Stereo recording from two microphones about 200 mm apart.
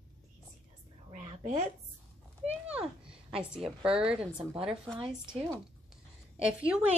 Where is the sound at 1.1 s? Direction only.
40° right (ahead or behind).